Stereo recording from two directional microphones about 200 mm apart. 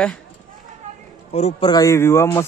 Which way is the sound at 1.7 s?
15° left (ahead or behind).